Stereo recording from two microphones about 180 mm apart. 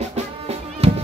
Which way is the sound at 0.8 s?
35° right (ahead or behind).